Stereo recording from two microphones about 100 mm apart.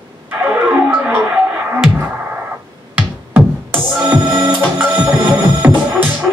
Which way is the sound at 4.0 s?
15° right (ahead or behind).